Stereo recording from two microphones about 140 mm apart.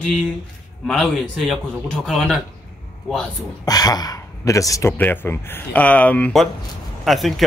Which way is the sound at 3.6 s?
25° left (ahead or behind).